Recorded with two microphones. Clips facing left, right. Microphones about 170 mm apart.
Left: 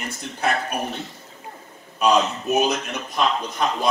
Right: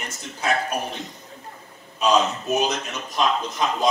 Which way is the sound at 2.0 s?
60° left (ahead or behind).